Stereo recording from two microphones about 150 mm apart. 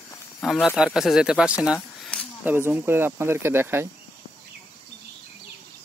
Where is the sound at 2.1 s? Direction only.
5° left (ahead or behind).